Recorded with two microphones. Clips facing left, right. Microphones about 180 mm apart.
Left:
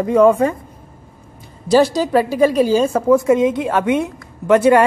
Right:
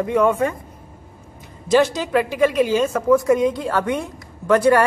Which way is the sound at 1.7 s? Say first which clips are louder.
Left 3 dB; 35° left (ahead or behind).